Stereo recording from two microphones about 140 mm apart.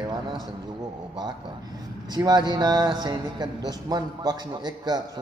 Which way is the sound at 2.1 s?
30° right (ahead or behind).